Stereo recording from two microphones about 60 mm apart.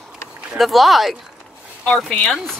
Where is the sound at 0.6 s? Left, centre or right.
Centre.